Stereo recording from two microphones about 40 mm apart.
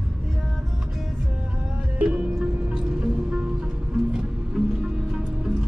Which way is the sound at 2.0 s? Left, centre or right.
Right.